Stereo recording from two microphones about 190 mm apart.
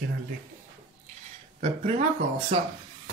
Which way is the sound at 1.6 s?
35° right (ahead or behind).